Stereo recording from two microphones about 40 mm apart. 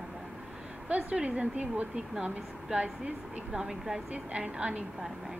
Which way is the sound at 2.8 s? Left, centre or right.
Right.